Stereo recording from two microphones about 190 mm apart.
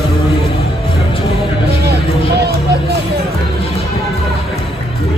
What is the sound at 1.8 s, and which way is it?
Music, 60° right (ahead or behind).